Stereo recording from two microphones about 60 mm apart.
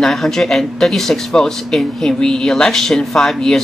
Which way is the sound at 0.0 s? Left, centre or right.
Centre.